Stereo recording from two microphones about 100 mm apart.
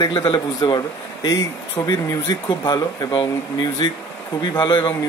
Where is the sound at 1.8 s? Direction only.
35° left (ahead or behind).